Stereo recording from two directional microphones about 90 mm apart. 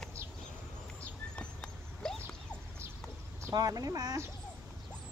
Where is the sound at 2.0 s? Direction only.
10° left (ahead or behind).